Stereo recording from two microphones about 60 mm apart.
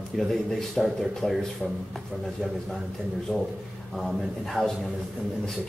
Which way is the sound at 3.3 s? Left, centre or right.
Left.